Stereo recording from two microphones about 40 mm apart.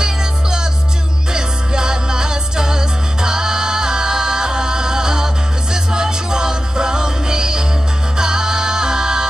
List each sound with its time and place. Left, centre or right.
1.3 s music: centre